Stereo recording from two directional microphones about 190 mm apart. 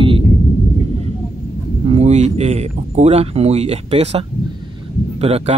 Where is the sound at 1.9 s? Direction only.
35° right (ahead or behind).